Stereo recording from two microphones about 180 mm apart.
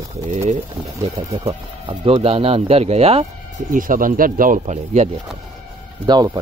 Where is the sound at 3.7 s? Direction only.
50° right (ahead or behind).